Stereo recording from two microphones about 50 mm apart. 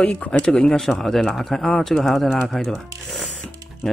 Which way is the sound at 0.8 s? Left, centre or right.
Centre.